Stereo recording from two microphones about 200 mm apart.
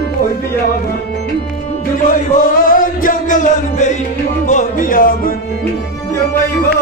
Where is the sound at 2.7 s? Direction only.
40° left (ahead or behind).